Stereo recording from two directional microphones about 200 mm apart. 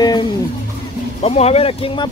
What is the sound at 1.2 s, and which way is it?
Speech, 30° left (ahead or behind).